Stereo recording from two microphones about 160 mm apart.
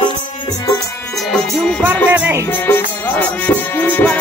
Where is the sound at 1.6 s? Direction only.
Centre (ahead or behind).